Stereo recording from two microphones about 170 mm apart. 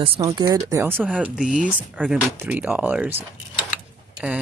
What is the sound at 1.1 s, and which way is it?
Speech, 5° right (ahead or behind).